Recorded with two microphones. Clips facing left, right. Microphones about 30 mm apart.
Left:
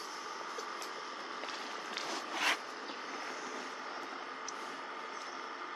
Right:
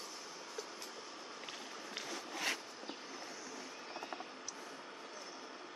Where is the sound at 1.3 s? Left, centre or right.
Left.